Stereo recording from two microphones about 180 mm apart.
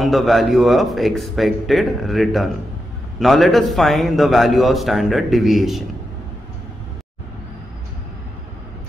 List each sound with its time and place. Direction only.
0.0 s a man's voice: centre (ahead or behind)